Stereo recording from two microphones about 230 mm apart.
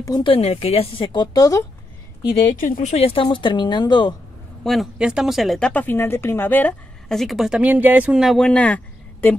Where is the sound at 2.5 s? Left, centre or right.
Left; by 4.1 s centre.